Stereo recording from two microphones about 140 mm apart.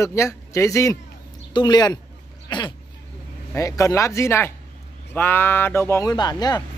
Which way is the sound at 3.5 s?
20° left (ahead or behind).